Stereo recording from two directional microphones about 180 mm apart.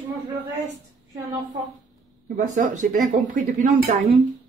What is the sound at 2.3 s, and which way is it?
Speech, 45° right (ahead or behind).